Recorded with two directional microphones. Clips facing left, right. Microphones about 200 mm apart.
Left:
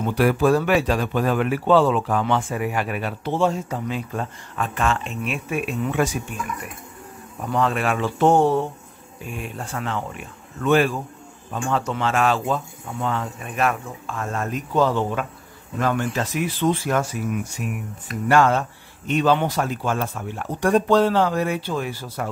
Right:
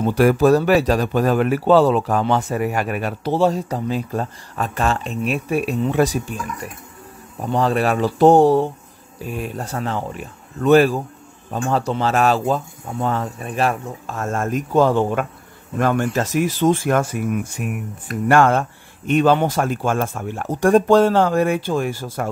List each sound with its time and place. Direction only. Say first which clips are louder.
0.0 s speech: right 4 dB; 45° right (ahead or behind)
7.3 s speech: right 4 dB; 30° right (ahead or behind); by 22.3 s 45° right (ahead or behind)